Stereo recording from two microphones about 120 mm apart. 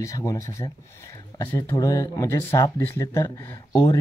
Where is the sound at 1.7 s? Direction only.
30° left (ahead or behind).